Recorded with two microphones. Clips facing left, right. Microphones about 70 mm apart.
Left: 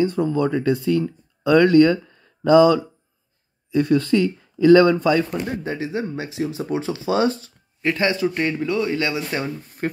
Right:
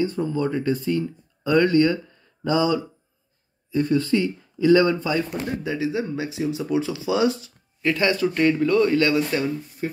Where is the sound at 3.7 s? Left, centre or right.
Left.